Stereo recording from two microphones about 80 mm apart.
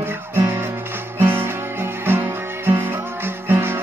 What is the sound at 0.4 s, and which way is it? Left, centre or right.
Music, right.